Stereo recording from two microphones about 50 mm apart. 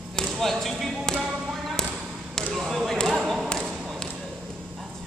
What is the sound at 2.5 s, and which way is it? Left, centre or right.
Basketball bounce, centre.